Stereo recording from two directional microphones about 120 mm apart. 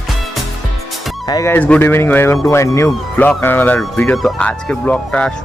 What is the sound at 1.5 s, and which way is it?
Speech, 15° left (ahead or behind).